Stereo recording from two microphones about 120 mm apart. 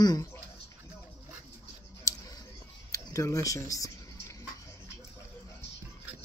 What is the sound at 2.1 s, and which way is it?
Tick, 30° left (ahead or behind).